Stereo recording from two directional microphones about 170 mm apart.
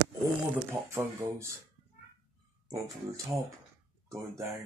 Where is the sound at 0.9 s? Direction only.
15° right (ahead or behind).